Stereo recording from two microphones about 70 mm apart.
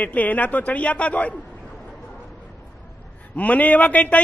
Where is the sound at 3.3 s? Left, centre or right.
Left.